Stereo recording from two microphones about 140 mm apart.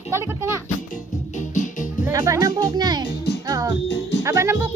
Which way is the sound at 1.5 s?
65° left (ahead or behind).